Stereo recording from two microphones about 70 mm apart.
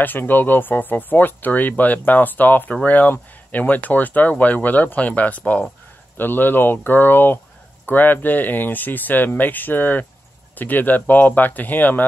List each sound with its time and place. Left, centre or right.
0.0 s speech: left